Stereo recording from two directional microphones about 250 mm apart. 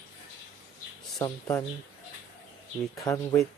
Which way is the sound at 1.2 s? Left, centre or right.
Centre.